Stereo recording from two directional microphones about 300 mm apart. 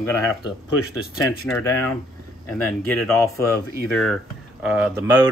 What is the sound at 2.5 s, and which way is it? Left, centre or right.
Speech, centre.